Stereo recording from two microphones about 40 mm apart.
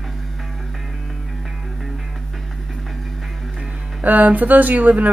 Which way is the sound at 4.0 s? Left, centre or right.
Right.